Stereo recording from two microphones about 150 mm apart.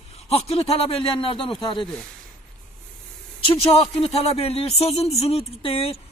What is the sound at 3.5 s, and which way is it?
A man's voice, 40° left (ahead or behind).